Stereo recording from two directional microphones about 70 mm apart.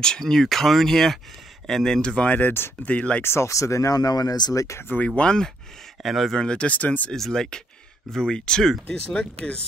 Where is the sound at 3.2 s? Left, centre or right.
Left.